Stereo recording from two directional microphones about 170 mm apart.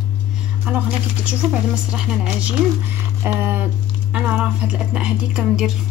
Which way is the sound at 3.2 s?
15° right (ahead or behind).